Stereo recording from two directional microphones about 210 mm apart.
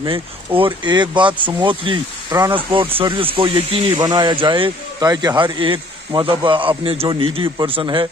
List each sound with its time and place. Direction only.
0.6 s speech: 25° right (ahead or behind)